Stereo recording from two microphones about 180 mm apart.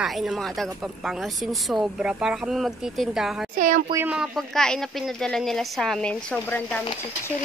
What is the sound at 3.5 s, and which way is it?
Speech, 45° right (ahead or behind).